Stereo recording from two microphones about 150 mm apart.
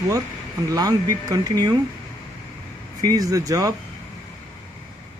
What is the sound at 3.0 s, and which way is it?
Speech, 25° right (ahead or behind).